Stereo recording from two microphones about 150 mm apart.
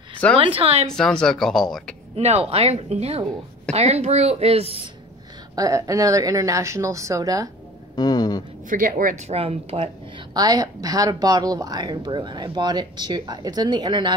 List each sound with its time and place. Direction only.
0.4 s a woman's voice: 40° right (ahead or behind)
0.8 s speech: 5° left (ahead or behind)
2.1 s a woman's voice: 45° right (ahead or behind)
5.6 s a woman's voice: 20° right (ahead or behind)
7.9 s a sound: 30° left (ahead or behind)
8.6 s a woman's voice: 65° right (ahead or behind)
9.3 s a woman's voice: 45° right (ahead or behind)
10.3 s a woman's voice: 25° right (ahead or behind)